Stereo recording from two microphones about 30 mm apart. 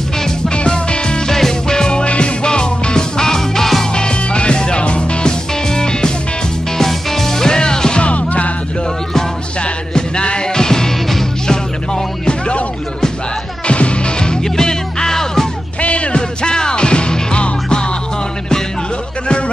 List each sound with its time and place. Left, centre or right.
0.5 s music: left
1.3 s music: centre
2.0 s music: left; by 3.8 s centre
3.9 s music: left
5.7 s music: left
6.8 s music: centre
8.0 s music: left
9.9 s music: left
13.7 s music: left
14.2 s music: left
15.8 s music: left
16.2 s music: left